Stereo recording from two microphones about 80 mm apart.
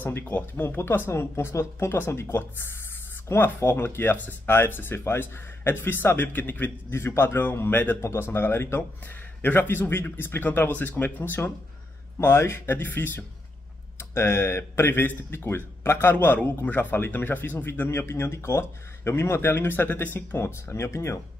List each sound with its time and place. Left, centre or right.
0.0 s speech: left